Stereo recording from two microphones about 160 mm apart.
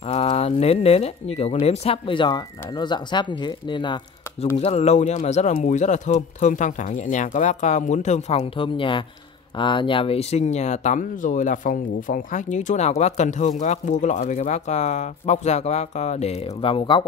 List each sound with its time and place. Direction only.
0.0 s speech: 40° left (ahead or behind)
4.6 s speech: 40° left (ahead or behind)